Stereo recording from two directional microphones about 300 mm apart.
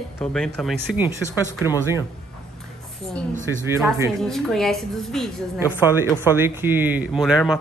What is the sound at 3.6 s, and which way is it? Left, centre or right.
Speech, centre.